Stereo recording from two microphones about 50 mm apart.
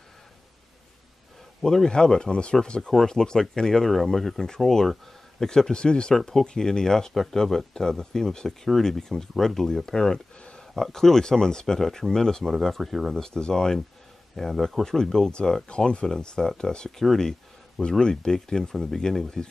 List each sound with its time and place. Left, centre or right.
1.6 s speech: centre
13.1 s speech: centre